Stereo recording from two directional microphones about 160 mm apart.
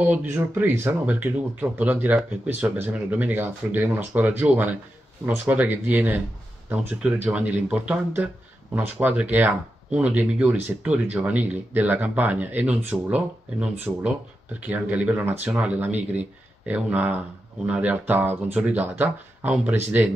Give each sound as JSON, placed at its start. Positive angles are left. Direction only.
{"t": 0.0, "sound": "speech", "side_deg": -10}